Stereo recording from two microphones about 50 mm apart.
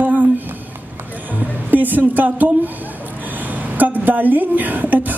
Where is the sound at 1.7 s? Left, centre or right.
Right.